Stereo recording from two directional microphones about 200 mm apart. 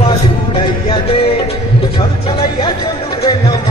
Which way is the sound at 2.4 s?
20° left (ahead or behind).